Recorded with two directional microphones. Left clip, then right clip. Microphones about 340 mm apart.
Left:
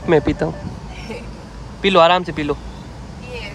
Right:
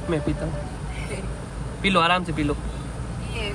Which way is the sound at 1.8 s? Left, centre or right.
Centre.